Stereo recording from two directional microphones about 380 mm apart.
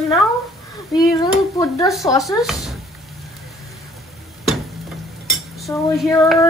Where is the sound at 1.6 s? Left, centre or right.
Centre.